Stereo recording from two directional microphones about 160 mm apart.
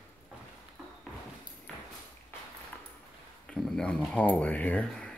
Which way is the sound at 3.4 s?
5° left (ahead or behind).